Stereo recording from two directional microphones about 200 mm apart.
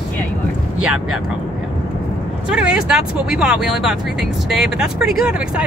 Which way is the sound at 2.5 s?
5° right (ahead or behind).